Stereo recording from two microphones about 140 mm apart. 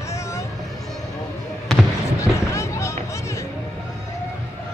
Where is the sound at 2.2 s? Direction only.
20° left (ahead or behind).